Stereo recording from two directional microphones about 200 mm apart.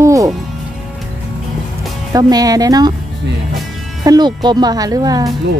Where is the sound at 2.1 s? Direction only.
20° right (ahead or behind).